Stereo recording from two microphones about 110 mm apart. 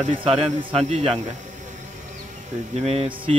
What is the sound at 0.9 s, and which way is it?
Speech, 80° right.